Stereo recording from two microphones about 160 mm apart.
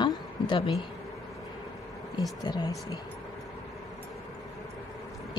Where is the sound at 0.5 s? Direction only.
35° left (ahead or behind).